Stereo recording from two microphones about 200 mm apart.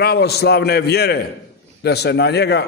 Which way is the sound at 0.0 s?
55° left (ahead or behind).